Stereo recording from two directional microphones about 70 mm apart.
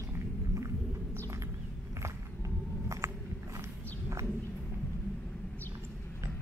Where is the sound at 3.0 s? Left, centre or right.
Right.